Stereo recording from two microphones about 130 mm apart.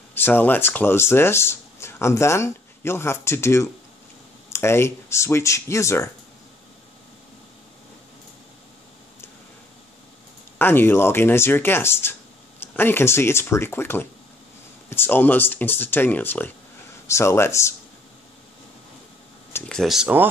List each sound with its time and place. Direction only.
0.1 s speech: 15° left (ahead or behind)
10.6 s speech: 15° left (ahead or behind)
19.7 s speech: centre (ahead or behind)